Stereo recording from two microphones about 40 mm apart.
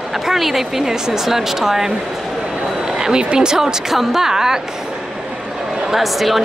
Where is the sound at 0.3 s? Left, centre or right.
Centre.